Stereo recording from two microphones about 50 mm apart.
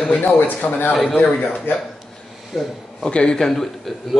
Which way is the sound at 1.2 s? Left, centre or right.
Left.